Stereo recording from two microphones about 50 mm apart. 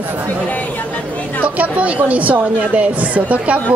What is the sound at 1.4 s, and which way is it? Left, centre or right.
A woman's voice, right.